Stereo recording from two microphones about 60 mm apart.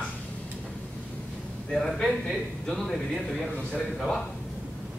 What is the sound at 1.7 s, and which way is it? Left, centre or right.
A man's voice, centre.